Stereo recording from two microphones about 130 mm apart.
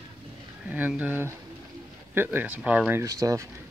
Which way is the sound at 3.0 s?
25° right (ahead or behind).